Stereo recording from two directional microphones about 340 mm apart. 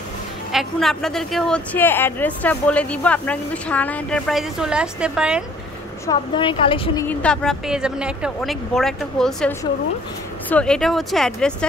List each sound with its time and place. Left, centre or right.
0.5 s speech: centre
6.0 s speech: centre